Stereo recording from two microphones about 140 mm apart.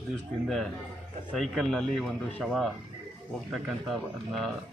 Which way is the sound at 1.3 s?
5° left (ahead or behind).